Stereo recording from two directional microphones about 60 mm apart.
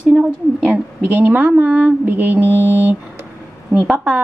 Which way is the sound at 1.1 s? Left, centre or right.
Right.